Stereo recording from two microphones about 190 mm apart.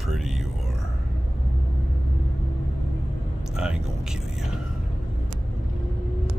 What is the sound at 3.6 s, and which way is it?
Speech, 5° right (ahead or behind).